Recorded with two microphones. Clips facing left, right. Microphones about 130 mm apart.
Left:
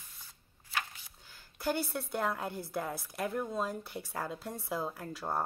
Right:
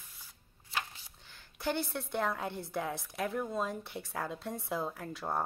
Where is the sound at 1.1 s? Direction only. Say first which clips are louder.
Left 1 dB; 5° left (ahead or behind).